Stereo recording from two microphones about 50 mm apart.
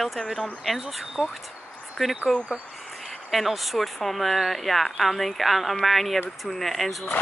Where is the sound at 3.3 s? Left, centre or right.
Centre.